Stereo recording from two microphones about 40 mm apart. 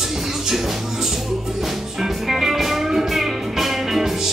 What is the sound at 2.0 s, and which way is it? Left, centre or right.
Music, centre.